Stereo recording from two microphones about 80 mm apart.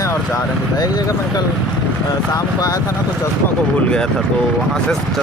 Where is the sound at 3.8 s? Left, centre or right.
Centre.